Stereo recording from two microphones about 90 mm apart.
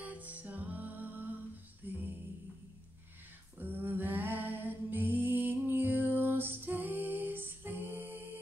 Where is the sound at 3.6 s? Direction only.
25° right (ahead or behind).